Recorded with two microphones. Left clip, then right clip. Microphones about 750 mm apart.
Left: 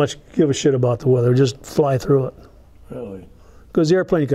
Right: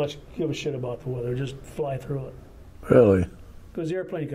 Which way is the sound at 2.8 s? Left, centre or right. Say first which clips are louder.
Right 16 dB; right.